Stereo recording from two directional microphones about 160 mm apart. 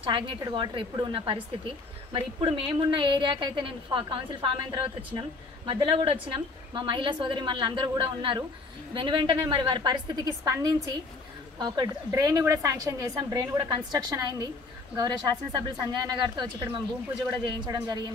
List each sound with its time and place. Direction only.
0.0 s a woman's voice: 30° right (ahead or behind)